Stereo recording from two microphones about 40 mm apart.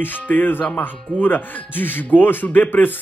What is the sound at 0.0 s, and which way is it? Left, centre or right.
A man's voice, left.